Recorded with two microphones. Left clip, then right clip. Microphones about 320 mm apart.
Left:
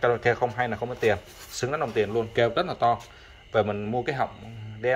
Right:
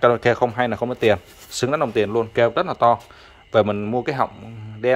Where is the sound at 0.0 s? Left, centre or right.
Centre.